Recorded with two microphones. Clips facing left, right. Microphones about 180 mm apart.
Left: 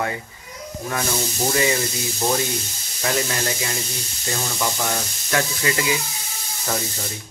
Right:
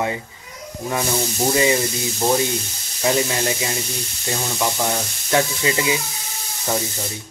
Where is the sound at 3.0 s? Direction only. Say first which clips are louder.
Right 4 dB; 20° right (ahead or behind).